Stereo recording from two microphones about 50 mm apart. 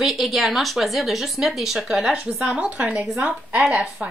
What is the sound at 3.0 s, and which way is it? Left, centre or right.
Speech, centre.